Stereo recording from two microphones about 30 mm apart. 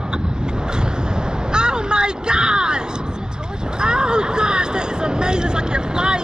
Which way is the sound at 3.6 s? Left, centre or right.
Right.